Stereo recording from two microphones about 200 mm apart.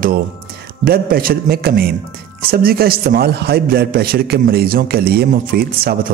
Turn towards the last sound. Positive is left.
turn(degrees=-50)  # may be behind; listen again after turning